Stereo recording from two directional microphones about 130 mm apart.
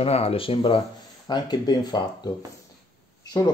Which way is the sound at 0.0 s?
50° left (ahead or behind).